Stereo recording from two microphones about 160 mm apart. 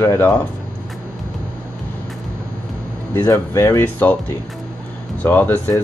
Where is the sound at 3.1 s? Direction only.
15° left (ahead or behind).